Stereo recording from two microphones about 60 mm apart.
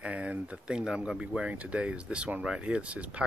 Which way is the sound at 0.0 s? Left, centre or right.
Right.